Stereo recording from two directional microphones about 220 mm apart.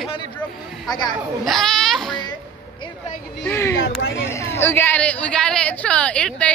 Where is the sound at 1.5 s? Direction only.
Centre (ahead or behind).